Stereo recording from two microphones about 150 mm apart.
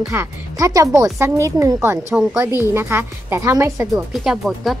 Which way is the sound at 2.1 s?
5° right (ahead or behind).